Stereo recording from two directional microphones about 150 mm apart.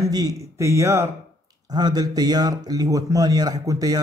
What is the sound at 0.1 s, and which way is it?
Speech, 25° right (ahead or behind).